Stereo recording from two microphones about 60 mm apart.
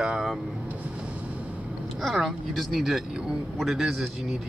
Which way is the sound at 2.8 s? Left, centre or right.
Centre.